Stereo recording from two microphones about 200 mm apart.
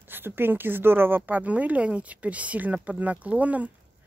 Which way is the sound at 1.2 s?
10° right (ahead or behind).